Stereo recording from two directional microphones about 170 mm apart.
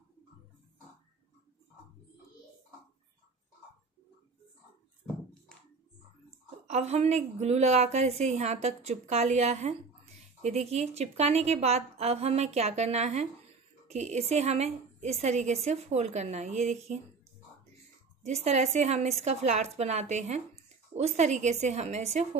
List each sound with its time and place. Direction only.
6.7 s a woman's voice: 40° right (ahead or behind)
18.2 s a woman's voice: 40° right (ahead or behind)